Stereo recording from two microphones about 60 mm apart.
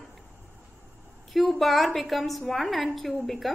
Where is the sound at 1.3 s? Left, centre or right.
Centre.